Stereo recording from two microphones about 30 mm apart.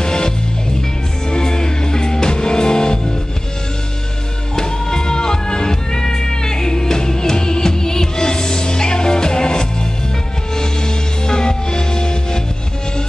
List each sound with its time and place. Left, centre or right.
0.0 s music: left
1.3 s music: left
4.6 s music: left